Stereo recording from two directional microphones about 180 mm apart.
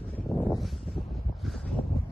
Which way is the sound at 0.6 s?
Centre (ahead or behind).